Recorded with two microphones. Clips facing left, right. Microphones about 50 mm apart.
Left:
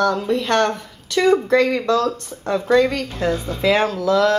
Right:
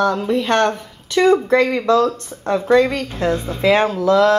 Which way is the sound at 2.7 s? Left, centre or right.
Centre.